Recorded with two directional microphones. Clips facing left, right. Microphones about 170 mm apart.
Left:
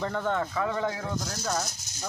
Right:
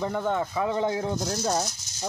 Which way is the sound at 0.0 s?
15° right (ahead or behind).